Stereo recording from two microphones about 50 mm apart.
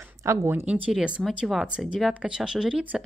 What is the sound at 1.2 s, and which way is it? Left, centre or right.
Speech, centre.